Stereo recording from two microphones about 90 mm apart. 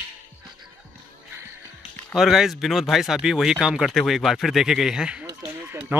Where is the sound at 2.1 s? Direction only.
5° right (ahead or behind).